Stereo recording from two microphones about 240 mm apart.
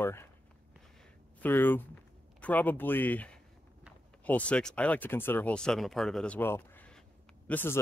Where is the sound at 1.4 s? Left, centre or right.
Centre.